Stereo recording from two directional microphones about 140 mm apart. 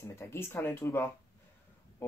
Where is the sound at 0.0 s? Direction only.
20° left (ahead or behind).